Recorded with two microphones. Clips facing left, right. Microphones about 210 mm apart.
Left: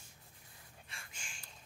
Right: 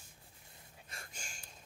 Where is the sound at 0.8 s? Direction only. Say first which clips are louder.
Right 5 dB; 40° right (ahead or behind).